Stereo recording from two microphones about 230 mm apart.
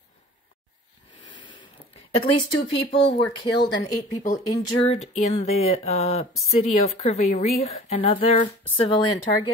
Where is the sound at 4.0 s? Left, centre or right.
Left.